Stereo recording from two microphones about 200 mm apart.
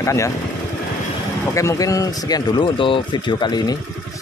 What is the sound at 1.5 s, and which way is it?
Speech, 15° left (ahead or behind).